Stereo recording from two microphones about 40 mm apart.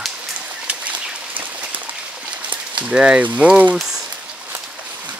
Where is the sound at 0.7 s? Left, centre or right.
Right.